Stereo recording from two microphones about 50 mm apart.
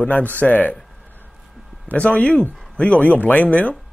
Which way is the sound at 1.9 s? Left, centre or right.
Left.